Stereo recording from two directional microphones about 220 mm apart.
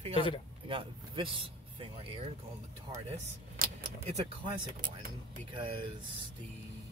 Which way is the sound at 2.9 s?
30° right (ahead or behind).